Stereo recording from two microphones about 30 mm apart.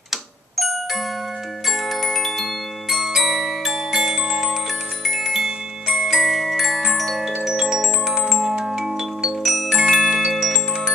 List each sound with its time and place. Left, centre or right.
0.1 s music: centre
3.7 s glockenspiel: centre
7.2 s glockenspiel: centre
9.4 s music: centre
9.9 s glockenspiel: centre
10.3 s glockenspiel: centre